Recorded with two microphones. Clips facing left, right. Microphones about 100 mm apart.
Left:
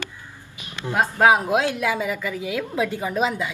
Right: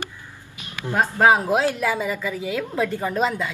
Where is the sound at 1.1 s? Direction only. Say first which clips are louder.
Even; 5° left (ahead or behind).